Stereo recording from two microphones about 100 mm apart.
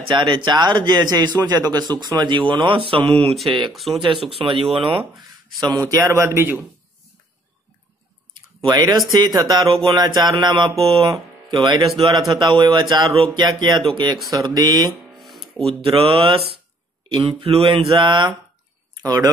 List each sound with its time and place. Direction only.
0.1 s speech: 50° right (ahead or behind); by 3.3 s 80° right
3.7 s speech: centre (ahead or behind)
4.3 s mantra: 65° right (ahead or behind)
5.7 s speech: 35° right (ahead or behind)
8.5 s speech: 35° right (ahead or behind)
15.6 s mantra: 70° right (ahead or behind)
17.2 s a sound: 75° right (ahead or behind); by 18.3 s 50° right (ahead or behind)
19.0 s speech: 35° right (ahead or behind)